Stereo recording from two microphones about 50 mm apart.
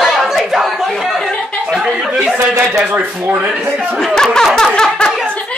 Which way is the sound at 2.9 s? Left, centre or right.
Right.